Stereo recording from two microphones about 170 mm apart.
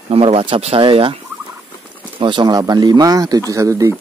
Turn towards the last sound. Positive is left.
turn(degrees=-20)  # may be behind; listen again after turning